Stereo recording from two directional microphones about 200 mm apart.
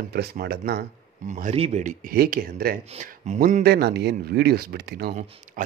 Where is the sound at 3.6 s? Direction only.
55° right (ahead or behind).